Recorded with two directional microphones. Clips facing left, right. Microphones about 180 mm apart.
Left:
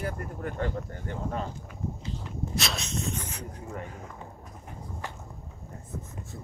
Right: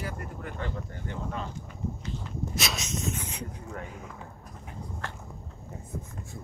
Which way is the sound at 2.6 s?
Centre (ahead or behind).